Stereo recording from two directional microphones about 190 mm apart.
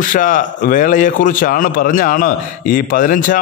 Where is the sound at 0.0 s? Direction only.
45° left (ahead or behind).